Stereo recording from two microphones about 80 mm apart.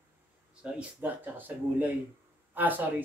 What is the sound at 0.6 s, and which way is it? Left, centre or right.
Speech, centre.